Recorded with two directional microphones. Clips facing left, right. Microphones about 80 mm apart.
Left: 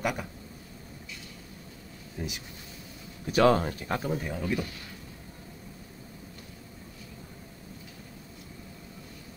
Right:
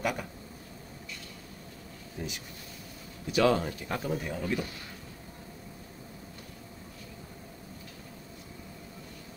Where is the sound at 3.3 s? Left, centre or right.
Left.